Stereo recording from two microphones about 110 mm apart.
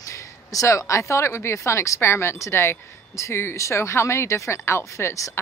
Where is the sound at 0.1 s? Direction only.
30° left (ahead or behind).